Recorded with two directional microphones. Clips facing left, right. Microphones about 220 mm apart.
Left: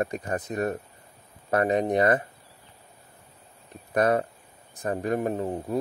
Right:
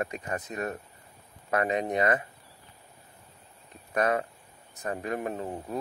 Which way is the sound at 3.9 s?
40° left (ahead or behind).